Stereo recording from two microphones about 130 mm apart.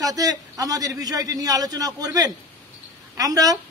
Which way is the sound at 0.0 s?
30° right (ahead or behind).